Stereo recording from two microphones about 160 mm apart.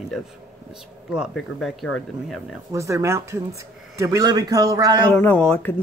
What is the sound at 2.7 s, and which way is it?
Speech, 20° right (ahead or behind).